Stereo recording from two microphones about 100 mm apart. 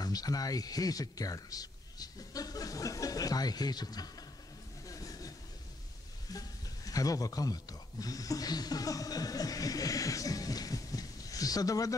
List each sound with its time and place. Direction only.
0.0 s speech: 40° left (ahead or behind)
4.8 s vehicle: 35° left (ahead or behind)
6.3 s speech: 35° left (ahead or behind)